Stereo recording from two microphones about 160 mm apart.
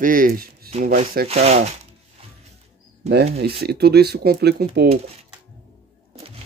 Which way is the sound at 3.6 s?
85° right.